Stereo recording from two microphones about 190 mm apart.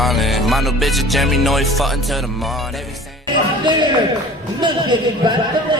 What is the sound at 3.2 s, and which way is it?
Speech, 25° right (ahead or behind).